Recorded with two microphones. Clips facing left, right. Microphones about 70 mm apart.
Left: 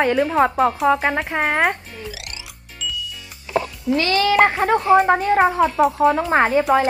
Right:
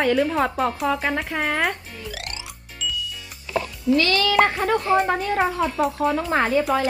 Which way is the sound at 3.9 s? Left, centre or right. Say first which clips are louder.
Left 2 dB; left.